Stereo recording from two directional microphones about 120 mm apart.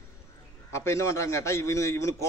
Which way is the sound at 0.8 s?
25° left (ahead or behind).